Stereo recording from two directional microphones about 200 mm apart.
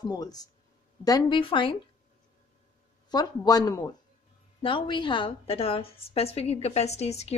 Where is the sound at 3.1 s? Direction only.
20° left (ahead or behind).